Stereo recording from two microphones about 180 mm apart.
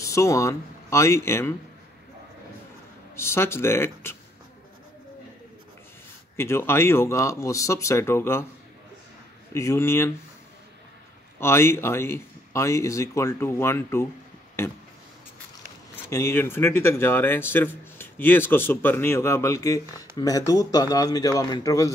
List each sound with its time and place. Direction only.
0.0 s speech: 15° left (ahead or behind)
3.2 s speech: 15° left (ahead or behind)
6.3 s speech: 15° left (ahead or behind)
9.5 s speech: 15° left (ahead or behind)
11.3 s speech: 15° left (ahead or behind)
16.1 s speech: 15° left (ahead or behind)